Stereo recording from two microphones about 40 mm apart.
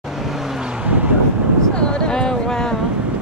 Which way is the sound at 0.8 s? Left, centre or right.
Right.